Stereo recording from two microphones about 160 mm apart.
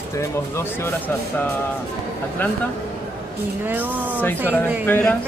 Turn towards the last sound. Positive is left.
turn(degrees=10)  # may be behind; listen again after turning